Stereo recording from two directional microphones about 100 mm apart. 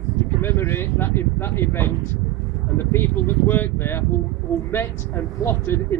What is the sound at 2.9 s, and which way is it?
Speech, 20° left (ahead or behind).